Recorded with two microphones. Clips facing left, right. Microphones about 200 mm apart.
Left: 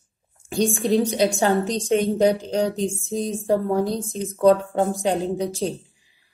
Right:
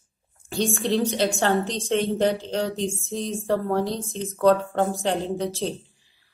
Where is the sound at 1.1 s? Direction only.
10° left (ahead or behind).